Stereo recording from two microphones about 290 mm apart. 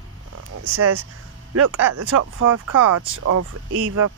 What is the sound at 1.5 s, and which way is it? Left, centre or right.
Speech, right.